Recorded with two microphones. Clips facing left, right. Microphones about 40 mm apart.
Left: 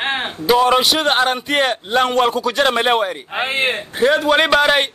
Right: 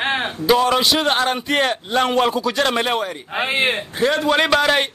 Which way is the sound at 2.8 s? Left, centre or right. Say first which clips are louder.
Left 5 dB; left.